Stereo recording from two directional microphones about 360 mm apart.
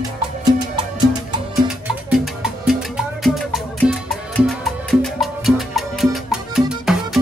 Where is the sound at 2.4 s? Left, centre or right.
Centre.